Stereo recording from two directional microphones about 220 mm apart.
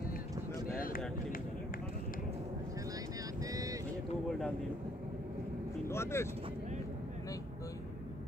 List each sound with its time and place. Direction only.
0.7 s a sound: 40° left (ahead or behind)
3.3 s vehicle: 15° right (ahead or behind)
5.9 s speech: 10° left (ahead or behind)